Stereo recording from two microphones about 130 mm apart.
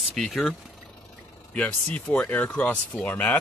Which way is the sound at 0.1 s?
Centre (ahead or behind).